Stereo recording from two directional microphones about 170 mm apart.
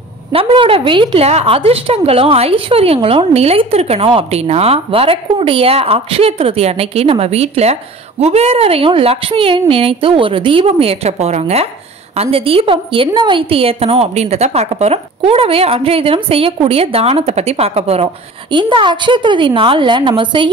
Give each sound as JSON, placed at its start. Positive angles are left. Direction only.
{"t": 0.3, "sound": "a woman's voice", "side_deg": -35}